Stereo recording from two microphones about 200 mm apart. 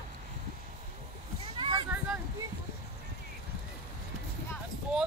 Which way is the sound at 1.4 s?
25° right (ahead or behind).